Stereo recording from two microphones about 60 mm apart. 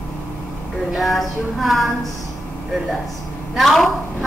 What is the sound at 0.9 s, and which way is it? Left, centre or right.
Speech, centre.